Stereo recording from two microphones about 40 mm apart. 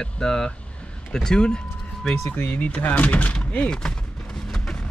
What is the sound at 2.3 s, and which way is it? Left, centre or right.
Speech, left.